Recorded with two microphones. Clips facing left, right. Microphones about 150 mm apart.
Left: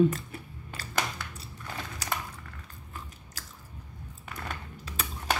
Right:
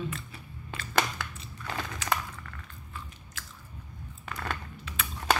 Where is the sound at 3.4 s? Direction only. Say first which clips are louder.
Right 2 dB; 40° left (ahead or behind).